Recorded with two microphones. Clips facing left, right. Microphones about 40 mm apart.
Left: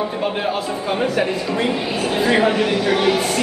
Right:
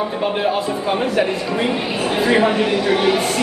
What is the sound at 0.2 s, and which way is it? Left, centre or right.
Speech, centre.